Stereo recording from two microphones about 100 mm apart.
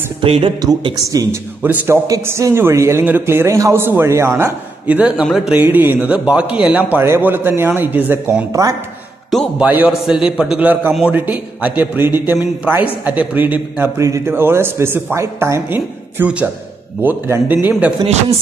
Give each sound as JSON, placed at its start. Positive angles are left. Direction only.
{"t": 0.2, "sound": "a woman's voice", "side_deg": -65}
{"t": 0.9, "sound": "speech", "side_deg": -35}
{"t": 1.6, "sound": "speech", "side_deg": -20}
{"t": 2.0, "sound": "speech", "side_deg": -30}
{"t": 4.8, "sound": "a man's voice", "side_deg": -15}
{"t": 5.6, "sound": "speech", "side_deg": -20}
{"t": 9.6, "sound": "a man's voice", "side_deg": -15}
{"t": 13.9, "sound": "speech", "side_deg": -30}